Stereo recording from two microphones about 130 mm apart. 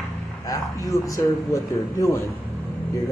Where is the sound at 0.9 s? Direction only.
25° left (ahead or behind).